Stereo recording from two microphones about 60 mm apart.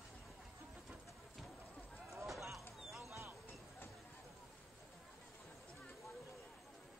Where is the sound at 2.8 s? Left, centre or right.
Centre.